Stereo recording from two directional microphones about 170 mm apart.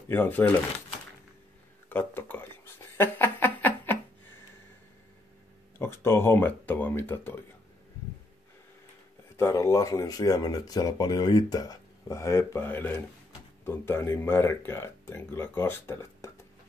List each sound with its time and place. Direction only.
0.1 s speech: 10° left (ahead or behind)
1.9 s a sound: 10° left (ahead or behind)
5.8 s speech: 15° left (ahead or behind)
9.4 s speech: 15° left (ahead or behind)